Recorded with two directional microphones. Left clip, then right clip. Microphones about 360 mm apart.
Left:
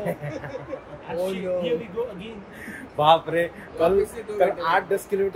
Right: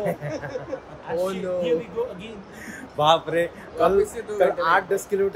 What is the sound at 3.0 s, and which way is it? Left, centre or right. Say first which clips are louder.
A man's voice: left 1 dB; centre.